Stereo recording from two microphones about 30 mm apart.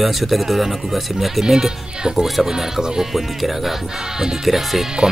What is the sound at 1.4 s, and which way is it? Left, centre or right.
Speech, centre.